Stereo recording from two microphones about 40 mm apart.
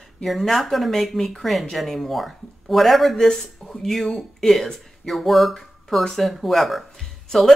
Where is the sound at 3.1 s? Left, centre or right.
Centre.